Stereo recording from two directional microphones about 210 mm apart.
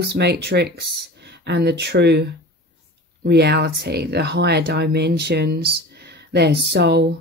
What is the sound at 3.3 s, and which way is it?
Speech, 50° right (ahead or behind).